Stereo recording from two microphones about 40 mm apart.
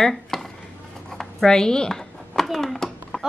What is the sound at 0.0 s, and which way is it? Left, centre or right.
Dishes, centre.